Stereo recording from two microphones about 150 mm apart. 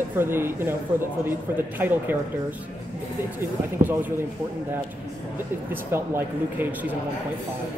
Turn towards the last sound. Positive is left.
turn(degrees=-15)  # may be behind; listen again after turning